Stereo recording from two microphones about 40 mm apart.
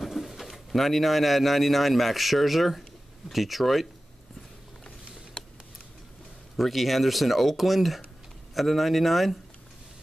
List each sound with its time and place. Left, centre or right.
0.0 s speech: centre
5.4 s tick: left
6.5 s speech: centre